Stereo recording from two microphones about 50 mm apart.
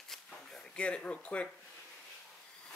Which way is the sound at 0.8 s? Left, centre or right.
Left.